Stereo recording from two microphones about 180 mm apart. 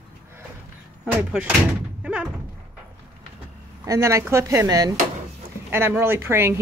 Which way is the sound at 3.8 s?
15° right (ahead or behind).